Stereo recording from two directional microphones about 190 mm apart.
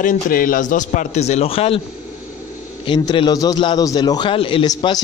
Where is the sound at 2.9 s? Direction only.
25° left (ahead or behind).